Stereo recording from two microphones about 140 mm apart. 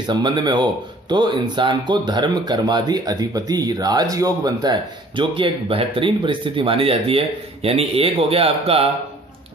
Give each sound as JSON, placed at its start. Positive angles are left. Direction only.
{"t": 0.0, "sound": "speech", "side_deg": -30}